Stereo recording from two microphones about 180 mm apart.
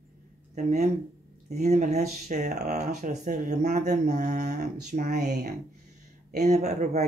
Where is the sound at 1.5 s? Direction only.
40° right (ahead or behind).